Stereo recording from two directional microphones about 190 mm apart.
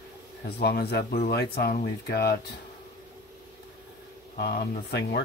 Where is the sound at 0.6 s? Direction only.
55° left (ahead or behind).